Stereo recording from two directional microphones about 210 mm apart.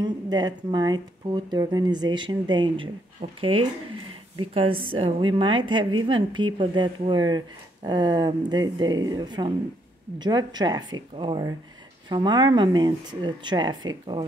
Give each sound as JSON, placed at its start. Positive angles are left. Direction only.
{"t": 0.0, "sound": "a woman's voice", "side_deg": -20}